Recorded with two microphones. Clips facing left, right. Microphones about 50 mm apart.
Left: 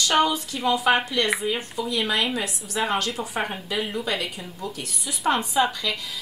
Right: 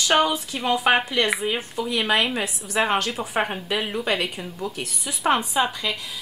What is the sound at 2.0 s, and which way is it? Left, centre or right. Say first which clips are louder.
Speech: right 3 dB; right.